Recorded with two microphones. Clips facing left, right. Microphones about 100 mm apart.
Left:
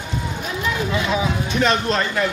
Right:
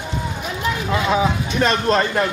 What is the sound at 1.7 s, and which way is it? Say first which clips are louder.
Speech: right 4 dB; 45° right (ahead or behind).